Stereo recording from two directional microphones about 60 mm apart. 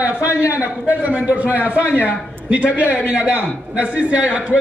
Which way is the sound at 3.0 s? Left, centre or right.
Right.